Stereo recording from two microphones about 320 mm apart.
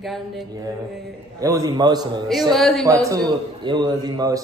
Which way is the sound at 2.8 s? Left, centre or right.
Centre.